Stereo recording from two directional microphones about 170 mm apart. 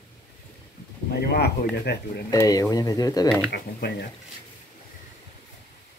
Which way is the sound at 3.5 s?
70° left (ahead or behind).